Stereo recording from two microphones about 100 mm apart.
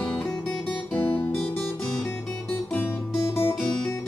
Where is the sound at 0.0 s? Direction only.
10° left (ahead or behind).